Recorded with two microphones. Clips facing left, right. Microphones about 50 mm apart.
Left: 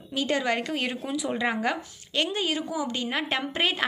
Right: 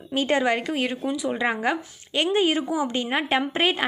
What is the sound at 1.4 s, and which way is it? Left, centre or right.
A woman's voice, centre.